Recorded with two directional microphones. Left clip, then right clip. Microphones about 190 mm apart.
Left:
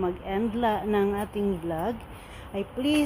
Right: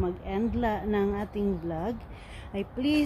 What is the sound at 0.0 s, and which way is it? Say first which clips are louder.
Speech: left 3 dB; 5° right (ahead or behind).